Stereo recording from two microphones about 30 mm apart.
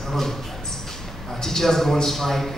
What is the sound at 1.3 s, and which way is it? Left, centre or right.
A man's voice, centre.